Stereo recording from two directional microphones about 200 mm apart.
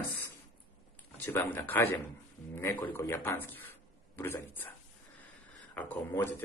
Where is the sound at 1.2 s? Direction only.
10° left (ahead or behind).